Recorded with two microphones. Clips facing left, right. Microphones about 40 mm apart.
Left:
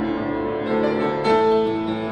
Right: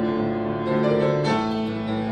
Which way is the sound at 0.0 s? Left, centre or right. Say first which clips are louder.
Left 1 dB; left.